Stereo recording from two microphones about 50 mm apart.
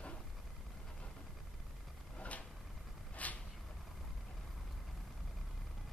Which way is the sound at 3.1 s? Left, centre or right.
Left.